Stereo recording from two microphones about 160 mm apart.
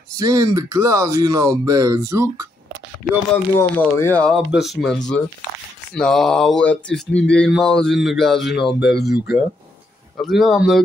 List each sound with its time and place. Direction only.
0.1 s speech: 20° right (ahead or behind)
3.5 s speech: 15° left (ahead or behind)
4.5 s speech: centre (ahead or behind)
9.1 s speech: 90° left
10.1 s speech: centre (ahead or behind)